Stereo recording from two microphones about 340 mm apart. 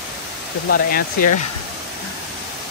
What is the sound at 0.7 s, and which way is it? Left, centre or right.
Speech, left.